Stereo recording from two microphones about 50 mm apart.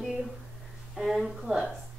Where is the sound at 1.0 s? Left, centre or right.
Centre.